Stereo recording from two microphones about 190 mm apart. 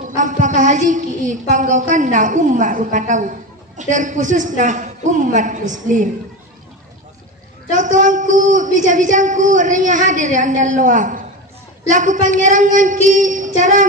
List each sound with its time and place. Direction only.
0.1 s a woman's voice: 40° right (ahead or behind)
7.7 s a woman's voice: 40° right (ahead or behind)